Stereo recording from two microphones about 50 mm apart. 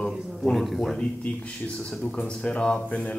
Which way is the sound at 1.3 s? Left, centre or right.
Left.